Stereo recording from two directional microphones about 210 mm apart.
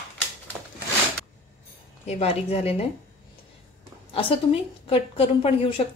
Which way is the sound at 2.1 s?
30° left (ahead or behind).